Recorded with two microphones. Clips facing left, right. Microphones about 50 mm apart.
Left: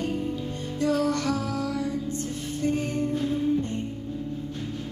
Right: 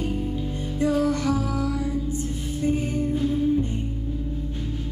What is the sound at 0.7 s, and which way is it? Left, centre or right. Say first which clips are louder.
Music: right 2 dB; centre.